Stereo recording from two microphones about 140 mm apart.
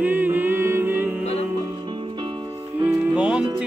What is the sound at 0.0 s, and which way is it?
Music, 15° right (ahead or behind).